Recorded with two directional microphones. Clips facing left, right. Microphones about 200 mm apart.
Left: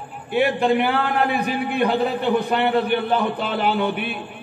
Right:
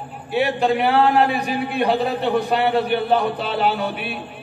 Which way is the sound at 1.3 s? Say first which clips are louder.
Even; 55° left (ahead or behind).